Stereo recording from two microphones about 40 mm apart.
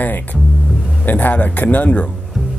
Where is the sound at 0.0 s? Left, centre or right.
Left.